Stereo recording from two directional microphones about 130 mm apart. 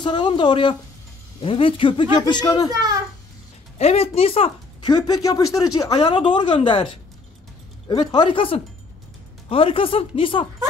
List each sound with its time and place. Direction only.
0.0 s speech: 35° left (ahead or behind)
3.7 s speech: 50° left (ahead or behind)
4.8 s speech: 30° left (ahead or behind)